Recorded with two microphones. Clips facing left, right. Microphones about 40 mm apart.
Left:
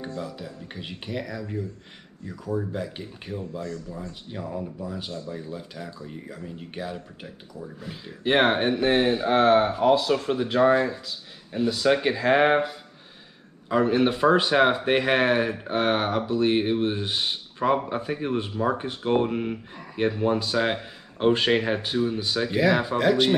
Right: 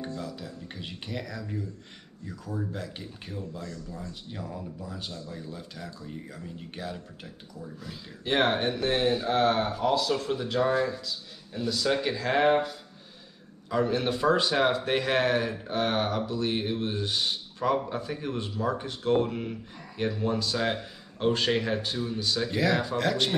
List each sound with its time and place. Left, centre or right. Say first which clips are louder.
0.2 s speech: left 3 dB; centre
7.6 s speech: left 3 dB; left
22.9 s speech: left 6 dB; centre